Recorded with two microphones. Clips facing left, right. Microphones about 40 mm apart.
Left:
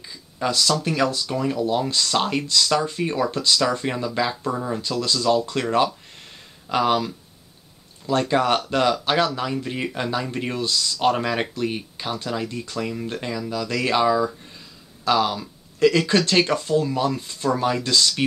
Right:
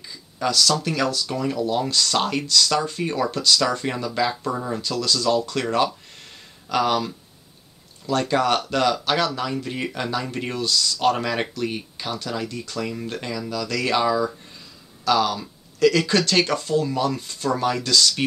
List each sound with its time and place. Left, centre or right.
0.0 s a sound: centre
0.8 s speech: centre
4.9 s speech: centre
8.1 s speech: centre